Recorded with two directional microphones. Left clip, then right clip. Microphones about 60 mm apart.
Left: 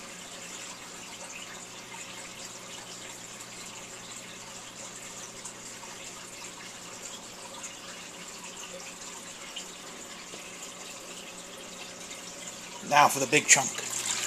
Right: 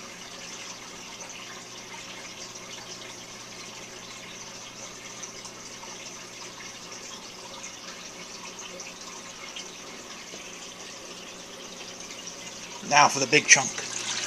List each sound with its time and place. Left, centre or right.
12.8 s speech: right